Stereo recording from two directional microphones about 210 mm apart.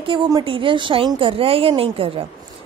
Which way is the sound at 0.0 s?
25° right (ahead or behind).